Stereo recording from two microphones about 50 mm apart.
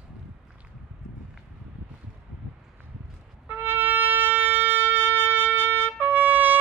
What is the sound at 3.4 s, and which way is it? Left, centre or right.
Shofar, right.